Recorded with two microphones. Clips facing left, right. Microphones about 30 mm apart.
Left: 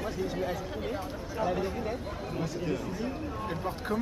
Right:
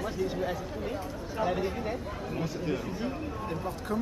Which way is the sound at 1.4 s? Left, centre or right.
Centre.